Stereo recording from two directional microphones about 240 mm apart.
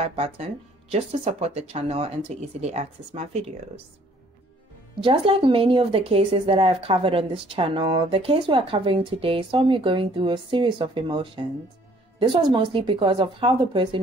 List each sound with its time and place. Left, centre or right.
0.0 s a woman's voice: right
5.0 s a woman's voice: right